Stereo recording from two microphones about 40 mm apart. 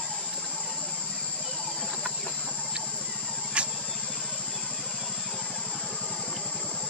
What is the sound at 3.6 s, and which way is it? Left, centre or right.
Vehicle, right.